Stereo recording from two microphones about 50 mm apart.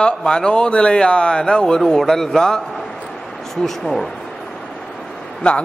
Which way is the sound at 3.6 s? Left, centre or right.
Centre.